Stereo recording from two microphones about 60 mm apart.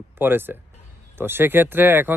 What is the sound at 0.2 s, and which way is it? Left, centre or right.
Speech, right.